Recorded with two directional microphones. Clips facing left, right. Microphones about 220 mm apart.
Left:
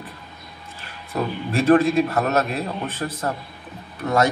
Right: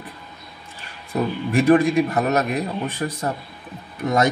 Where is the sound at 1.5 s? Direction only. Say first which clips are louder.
Even; 15° right (ahead or behind).